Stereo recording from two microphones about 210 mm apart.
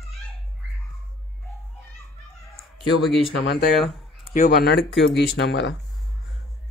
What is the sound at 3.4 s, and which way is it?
Speech, 50° left (ahead or behind).